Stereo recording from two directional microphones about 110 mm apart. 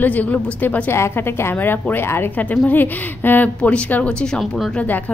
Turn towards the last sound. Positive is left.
turn(degrees=15)  # may be behind; listen again after turning